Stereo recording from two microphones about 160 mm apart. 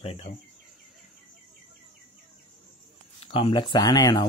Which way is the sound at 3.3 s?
35° left (ahead or behind).